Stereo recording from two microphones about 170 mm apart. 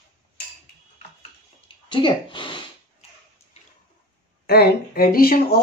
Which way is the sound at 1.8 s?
30° left (ahead or behind).